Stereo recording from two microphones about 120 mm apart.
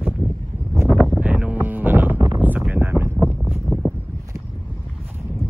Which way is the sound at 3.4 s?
5° right (ahead or behind).